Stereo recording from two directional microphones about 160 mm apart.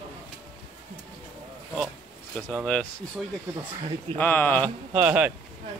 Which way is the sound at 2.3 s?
5° left (ahead or behind).